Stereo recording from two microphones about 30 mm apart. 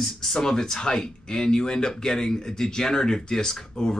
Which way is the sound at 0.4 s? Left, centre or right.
Centre.